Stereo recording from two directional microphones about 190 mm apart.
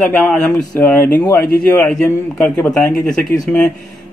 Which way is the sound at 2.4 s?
5° left (ahead or behind).